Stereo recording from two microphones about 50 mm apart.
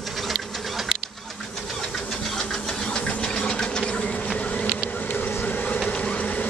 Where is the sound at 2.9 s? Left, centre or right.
Centre.